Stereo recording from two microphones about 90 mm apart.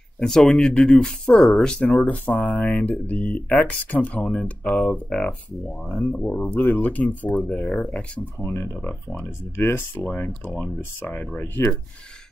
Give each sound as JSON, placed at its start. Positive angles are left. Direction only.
{"t": 0.2, "sound": "speech", "side_deg": 5}
{"t": 7.3, "sound": "speech", "side_deg": 5}
{"t": 8.4, "sound": "speech", "side_deg": 25}
{"t": 10.0, "sound": "speech", "side_deg": 10}